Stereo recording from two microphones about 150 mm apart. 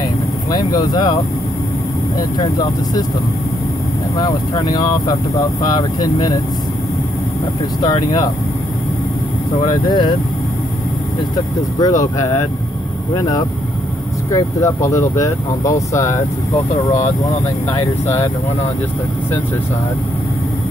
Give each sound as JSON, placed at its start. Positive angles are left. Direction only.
{"t": 0.5, "sound": "speech", "side_deg": 25}
{"t": 4.2, "sound": "speech", "side_deg": 30}
{"t": 7.8, "sound": "speech", "side_deg": 30}
{"t": 9.6, "sound": "speech", "side_deg": 30}
{"t": 11.3, "sound": "speech", "side_deg": 25}